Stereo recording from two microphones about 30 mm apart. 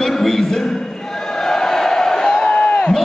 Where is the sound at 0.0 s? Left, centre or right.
Centre.